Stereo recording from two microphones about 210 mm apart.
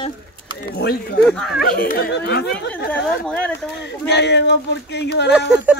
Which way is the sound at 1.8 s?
50° left (ahead or behind).